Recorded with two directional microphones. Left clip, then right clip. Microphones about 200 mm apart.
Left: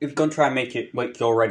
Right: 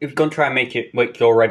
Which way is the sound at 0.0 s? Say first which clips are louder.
Right 2 dB; 25° left (ahead or behind).